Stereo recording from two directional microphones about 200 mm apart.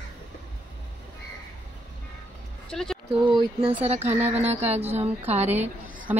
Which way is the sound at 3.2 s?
25° right (ahead or behind).